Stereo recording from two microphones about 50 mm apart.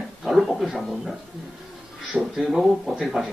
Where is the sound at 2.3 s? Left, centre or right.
Centre.